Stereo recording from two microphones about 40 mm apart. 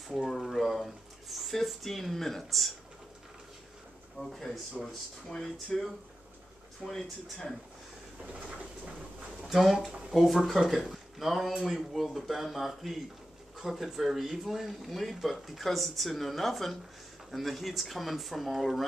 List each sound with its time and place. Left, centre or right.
0.3 s speech: centre
4.2 s speech: centre
8.5 s a sound: right
9.4 s speech: centre